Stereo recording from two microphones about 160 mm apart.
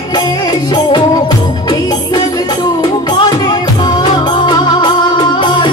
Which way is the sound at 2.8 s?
25° left (ahead or behind).